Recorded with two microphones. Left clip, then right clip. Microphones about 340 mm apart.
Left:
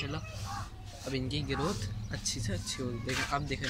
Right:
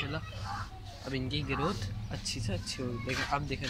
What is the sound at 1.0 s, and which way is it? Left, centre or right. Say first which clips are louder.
Speech: even; centre.